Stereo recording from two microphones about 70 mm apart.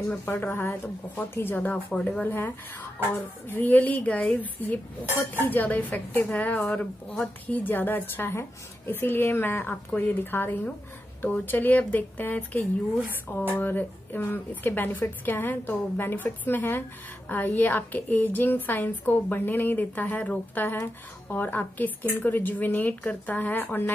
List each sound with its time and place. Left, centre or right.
0.1 s a woman's voice: left
2.2 s a woman's voice: left